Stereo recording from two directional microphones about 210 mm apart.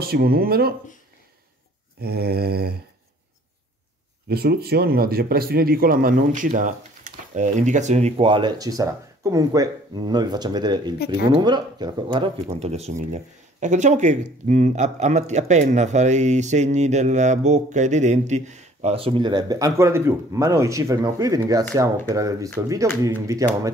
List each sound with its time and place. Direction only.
0.0 s speech: 45° right (ahead or behind)
2.0 s speech: 50° right (ahead or behind)
4.3 s speech: 50° right (ahead or behind); by 23.7 s 15° right (ahead or behind)